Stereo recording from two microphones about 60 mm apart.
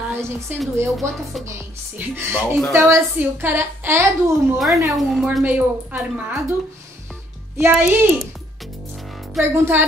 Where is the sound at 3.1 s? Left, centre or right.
Right.